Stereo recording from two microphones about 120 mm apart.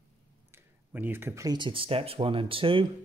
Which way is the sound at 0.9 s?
15° right (ahead or behind).